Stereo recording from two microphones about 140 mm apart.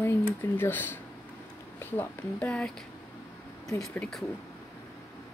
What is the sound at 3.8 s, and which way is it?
Speech, 5° left (ahead or behind).